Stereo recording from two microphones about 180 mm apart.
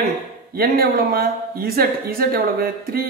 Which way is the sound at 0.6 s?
55° right (ahead or behind).